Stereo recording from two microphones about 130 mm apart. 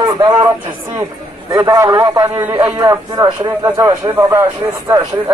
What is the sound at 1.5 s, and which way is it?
A man's voice, 25° right (ahead or behind).